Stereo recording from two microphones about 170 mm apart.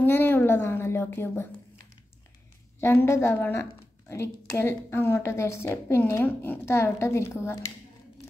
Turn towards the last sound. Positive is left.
turn(degrees=15)  # may be behind; listen again after turning